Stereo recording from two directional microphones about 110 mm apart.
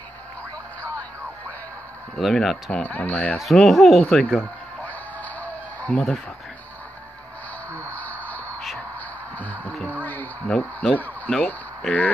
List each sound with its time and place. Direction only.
2.1 s speech: centre (ahead or behind)
2.8 s speech: 15° left (ahead or behind)
3.3 s speech: centre (ahead or behind)
4.4 s music: 15° left (ahead or behind)
7.9 s a sound: 15° left (ahead or behind)
9.4 s music: 15° left (ahead or behind)
10.0 s a sound: 15° left (ahead or behind)
10.6 s speech: 15° left (ahead or behind)